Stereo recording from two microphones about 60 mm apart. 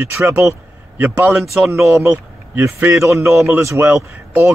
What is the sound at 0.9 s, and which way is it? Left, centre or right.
Speech, right.